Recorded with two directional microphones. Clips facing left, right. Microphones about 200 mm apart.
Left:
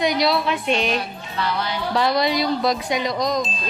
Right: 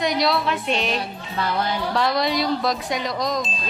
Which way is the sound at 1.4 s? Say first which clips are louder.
Right 1 dB; 50° right (ahead or behind).